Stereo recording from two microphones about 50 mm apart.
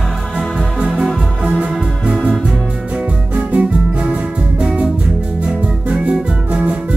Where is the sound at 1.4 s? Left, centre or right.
Centre.